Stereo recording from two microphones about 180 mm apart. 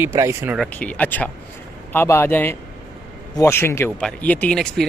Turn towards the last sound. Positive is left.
turn(degrees=5)  # may be behind; listen again after turning